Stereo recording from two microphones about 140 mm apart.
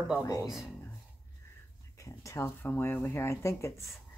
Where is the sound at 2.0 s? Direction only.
20° left (ahead or behind).